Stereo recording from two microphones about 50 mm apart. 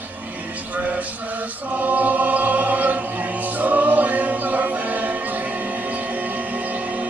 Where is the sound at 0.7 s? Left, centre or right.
Right.